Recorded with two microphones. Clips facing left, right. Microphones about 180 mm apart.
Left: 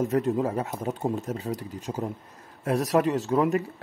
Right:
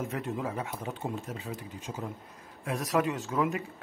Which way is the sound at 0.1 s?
40° left (ahead or behind).